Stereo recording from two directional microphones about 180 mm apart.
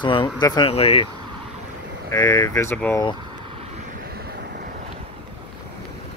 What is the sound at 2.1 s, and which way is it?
Speech, 20° left (ahead or behind).